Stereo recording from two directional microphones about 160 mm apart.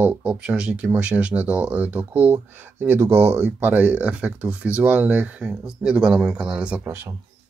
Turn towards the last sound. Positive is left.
turn(degrees=-15)  # may be behind; listen again after turning